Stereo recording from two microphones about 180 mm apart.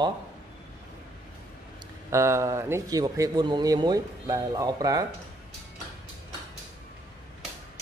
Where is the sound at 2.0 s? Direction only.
15° right (ahead or behind).